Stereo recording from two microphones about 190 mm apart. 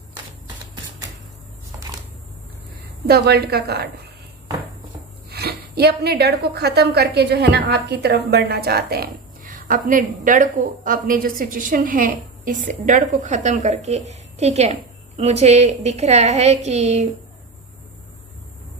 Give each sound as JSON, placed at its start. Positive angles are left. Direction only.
{"t": 3.1, "sound": "a woman's voice", "side_deg": -55}
{"t": 5.3, "sound": "a woman's voice", "side_deg": -55}